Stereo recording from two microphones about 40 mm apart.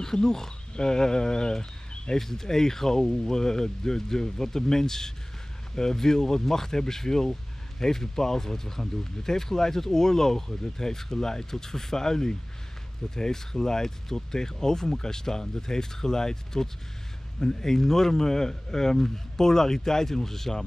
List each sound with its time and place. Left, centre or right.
0.0 s speech: centre